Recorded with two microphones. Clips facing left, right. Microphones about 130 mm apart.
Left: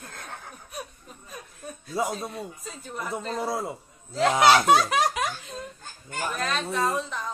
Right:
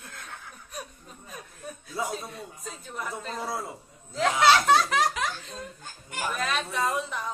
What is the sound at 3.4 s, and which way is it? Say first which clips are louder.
Speech: left 4 dB; 25° left (ahead or behind).